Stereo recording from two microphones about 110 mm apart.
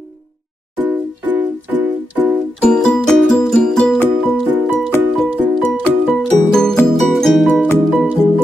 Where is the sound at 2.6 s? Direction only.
5° left (ahead or behind).